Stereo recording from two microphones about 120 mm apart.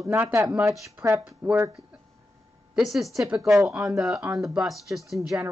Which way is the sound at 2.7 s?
Centre (ahead or behind).